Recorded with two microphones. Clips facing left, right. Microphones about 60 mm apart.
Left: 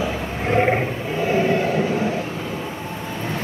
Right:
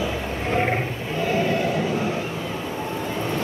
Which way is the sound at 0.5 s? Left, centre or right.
Centre.